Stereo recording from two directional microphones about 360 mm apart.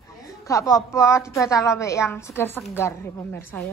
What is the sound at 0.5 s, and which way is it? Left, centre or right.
A woman's voice, centre.